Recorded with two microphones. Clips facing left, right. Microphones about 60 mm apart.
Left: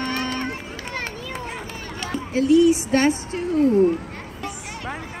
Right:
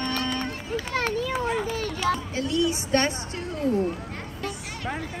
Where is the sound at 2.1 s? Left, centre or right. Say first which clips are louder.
Left 9 dB; centre.